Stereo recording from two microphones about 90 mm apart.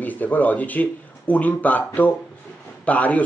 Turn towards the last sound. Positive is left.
turn(degrees=15)  # may be behind; listen again after turning